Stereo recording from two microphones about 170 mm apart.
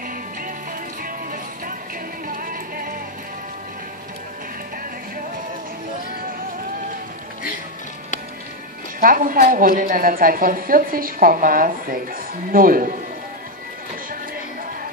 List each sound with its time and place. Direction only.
1.0 s music: 55° right (ahead or behind)
9.0 s a woman's voice: 55° right (ahead or behind)